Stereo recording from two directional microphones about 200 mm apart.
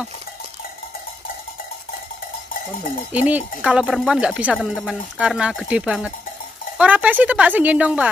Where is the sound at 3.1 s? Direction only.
5° right (ahead or behind).